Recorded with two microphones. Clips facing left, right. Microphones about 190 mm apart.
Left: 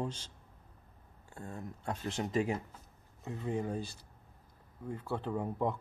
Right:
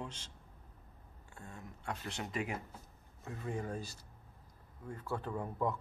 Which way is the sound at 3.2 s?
20° left (ahead or behind).